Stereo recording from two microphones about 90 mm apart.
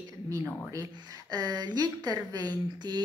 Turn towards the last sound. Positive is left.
turn(degrees=-50)  # may be behind; listen again after turning